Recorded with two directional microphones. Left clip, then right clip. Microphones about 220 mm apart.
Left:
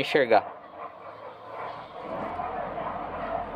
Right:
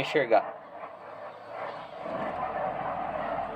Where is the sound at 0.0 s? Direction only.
45° left (ahead or behind).